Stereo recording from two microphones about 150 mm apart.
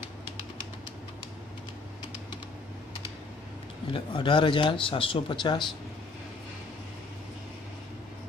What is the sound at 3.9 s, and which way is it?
Speech, 35° left (ahead or behind).